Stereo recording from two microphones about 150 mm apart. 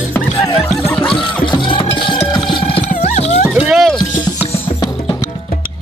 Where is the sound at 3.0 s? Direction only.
45° left (ahead or behind).